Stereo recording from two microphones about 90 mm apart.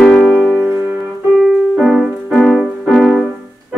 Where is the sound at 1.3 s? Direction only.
Centre (ahead or behind).